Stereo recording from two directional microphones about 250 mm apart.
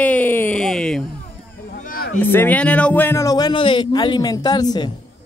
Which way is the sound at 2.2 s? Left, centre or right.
Centre.